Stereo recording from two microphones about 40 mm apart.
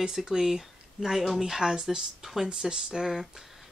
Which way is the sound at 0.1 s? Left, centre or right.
Centre.